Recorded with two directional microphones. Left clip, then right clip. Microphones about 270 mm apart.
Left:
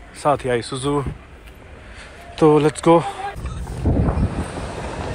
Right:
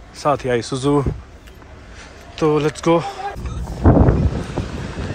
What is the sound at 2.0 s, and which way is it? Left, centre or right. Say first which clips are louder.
Speech: left 3 dB; centre.